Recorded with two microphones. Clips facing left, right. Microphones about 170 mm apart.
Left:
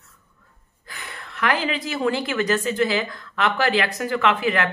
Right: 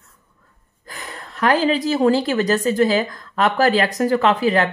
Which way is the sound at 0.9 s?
40° right (ahead or behind).